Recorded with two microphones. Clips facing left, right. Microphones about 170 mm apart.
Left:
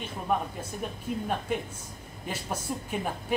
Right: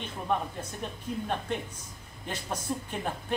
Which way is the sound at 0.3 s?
5° left (ahead or behind).